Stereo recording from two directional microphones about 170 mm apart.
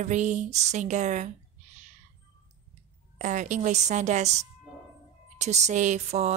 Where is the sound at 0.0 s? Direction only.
45° right (ahead or behind).